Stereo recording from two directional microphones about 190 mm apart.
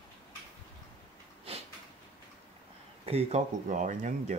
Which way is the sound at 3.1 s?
30° right (ahead or behind).